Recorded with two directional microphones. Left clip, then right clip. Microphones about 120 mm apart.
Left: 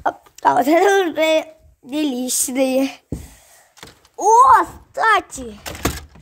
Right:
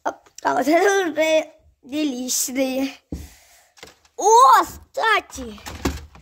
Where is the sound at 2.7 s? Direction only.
40° left (ahead or behind).